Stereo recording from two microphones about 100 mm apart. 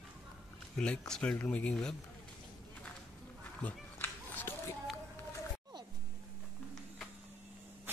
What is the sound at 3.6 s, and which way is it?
Run, 20° left (ahead or behind).